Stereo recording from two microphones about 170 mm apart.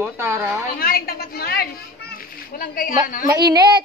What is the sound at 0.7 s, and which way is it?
A child's voice, 60° left (ahead or behind).